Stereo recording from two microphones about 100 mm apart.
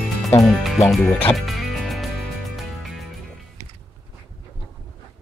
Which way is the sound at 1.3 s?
Centre (ahead or behind).